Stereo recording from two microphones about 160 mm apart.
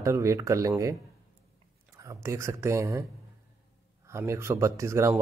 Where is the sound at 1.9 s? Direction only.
20° right (ahead or behind).